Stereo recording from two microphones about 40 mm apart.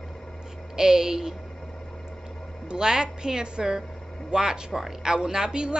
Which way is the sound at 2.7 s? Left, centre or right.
Centre.